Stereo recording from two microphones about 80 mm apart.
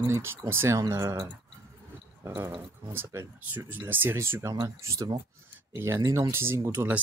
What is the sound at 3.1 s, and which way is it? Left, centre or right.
Speech, right.